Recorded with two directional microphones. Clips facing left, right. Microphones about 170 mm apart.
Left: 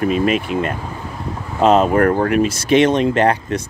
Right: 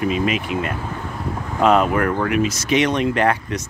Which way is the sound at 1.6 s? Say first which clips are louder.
Left 3 dB; 25° left (ahead or behind).